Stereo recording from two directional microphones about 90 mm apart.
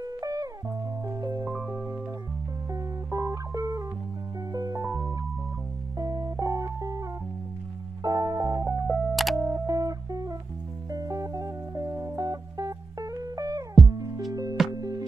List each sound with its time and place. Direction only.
0.0 s music: 45° right (ahead or behind)
1.4 s music: 25° right (ahead or behind)
8.8 s music: centre (ahead or behind)
9.4 s music: 40° right (ahead or behind)